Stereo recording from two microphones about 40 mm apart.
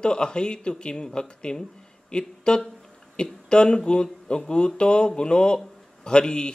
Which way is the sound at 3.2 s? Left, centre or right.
Left.